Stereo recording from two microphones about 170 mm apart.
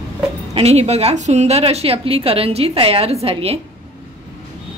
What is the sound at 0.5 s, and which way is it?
A woman's voice, 40° right (ahead or behind).